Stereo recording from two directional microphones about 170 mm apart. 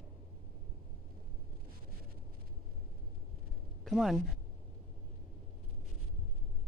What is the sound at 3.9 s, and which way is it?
Speech, centre (ahead or behind).